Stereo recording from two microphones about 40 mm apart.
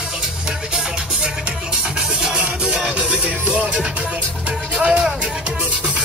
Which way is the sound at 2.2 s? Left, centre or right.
Right.